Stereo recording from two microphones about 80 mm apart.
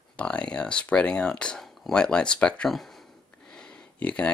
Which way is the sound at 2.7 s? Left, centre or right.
Centre.